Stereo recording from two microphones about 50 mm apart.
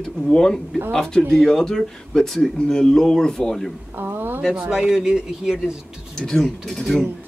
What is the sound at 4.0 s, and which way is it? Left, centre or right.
Speech, right.